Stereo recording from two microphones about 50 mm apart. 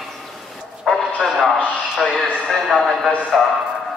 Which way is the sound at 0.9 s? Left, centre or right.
Centre.